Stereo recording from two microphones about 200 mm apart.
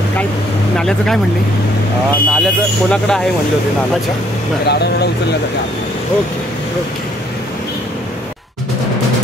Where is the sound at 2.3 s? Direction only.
5° left (ahead or behind).